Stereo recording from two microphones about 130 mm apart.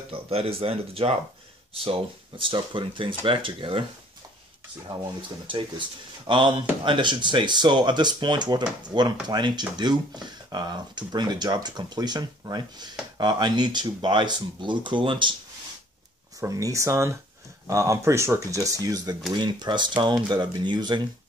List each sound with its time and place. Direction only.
0.1 s speech: 50° right (ahead or behind)
5.5 s speech: 40° right (ahead or behind)
16.3 s speech: 25° right (ahead or behind)